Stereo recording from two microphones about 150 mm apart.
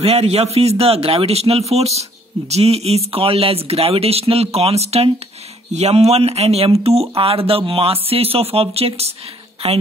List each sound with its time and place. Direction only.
0.0 s speech: 40° right (ahead or behind)